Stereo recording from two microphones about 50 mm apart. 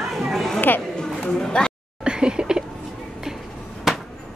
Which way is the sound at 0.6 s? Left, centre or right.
Left.